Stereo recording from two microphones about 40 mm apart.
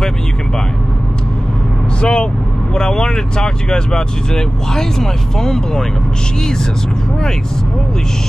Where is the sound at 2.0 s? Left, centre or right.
Left.